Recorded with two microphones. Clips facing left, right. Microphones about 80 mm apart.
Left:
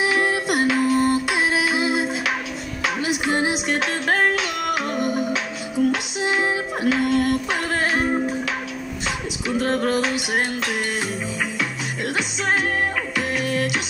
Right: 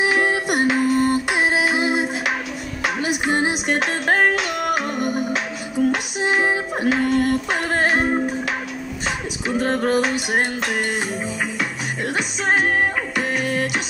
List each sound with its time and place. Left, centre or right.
0.0 s music: right
1.0 s a sound: right
3.0 s music: right
6.2 s music: right